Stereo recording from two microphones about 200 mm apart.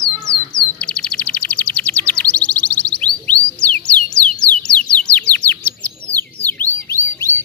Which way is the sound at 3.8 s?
5° left (ahead or behind).